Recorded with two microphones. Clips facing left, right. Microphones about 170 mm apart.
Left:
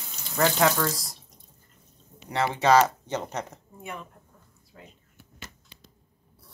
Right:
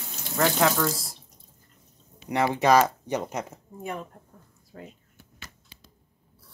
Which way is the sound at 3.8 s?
40° right (ahead or behind).